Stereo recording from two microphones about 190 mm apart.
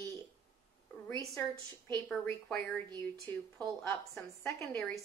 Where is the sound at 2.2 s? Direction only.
10° left (ahead or behind).